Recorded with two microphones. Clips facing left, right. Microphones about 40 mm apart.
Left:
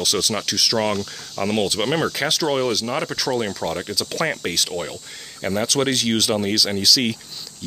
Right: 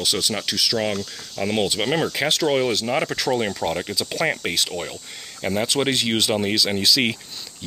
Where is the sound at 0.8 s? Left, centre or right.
Centre.